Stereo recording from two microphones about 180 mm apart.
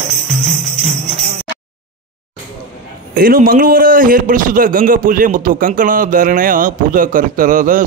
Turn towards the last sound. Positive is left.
turn(degrees=-45)  # may be behind; listen again after turning